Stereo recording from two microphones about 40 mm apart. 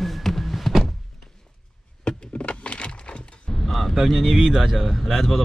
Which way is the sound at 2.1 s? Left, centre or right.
Left.